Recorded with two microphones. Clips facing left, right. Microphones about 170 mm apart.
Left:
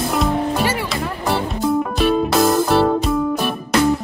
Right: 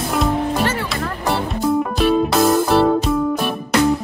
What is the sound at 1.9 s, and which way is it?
Music, centre (ahead or behind).